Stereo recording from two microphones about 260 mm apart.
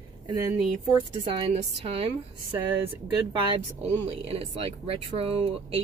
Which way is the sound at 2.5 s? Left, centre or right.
Centre.